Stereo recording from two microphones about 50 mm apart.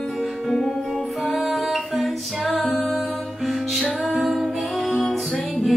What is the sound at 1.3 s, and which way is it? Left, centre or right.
Music, centre.